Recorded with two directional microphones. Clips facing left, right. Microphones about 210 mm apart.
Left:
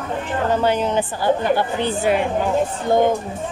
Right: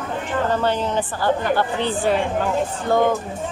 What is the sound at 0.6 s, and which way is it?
A woman's voice, 15° left (ahead or behind).